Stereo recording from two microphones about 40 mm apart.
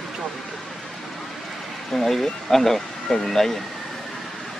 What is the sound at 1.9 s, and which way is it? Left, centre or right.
Speech, centre.